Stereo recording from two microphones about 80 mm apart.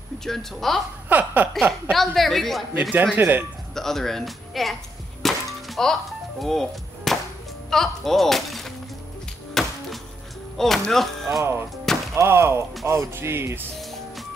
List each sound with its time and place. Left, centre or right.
0.2 s speech: centre
1.0 s a sound: right
1.5 s speech: centre
3.2 s a sound: right
3.7 s speech: centre
5.2 s music: centre
7.7 s speech: centre
9.5 s music: centre
10.6 s speech: centre
12.2 s music: right
13.7 s music: centre